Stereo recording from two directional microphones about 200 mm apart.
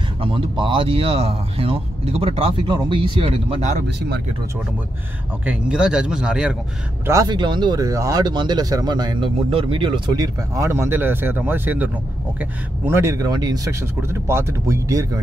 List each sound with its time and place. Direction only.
0.2 s speech: 25° right (ahead or behind)
5.4 s speech: 5° right (ahead or behind)
7.1 s speech: 20° right (ahead or behind)